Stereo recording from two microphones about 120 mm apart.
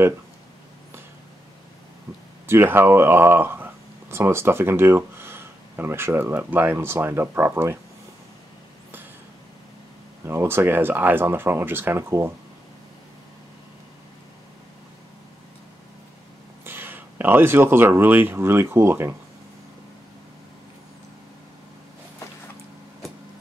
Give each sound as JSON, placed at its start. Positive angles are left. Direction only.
{"t": 2.4, "sound": "speech", "side_deg": -20}
{"t": 10.2, "sound": "speech", "side_deg": -20}
{"t": 16.6, "sound": "speech", "side_deg": -20}